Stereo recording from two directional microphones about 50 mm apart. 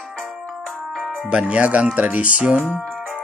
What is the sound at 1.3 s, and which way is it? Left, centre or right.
Speech, right.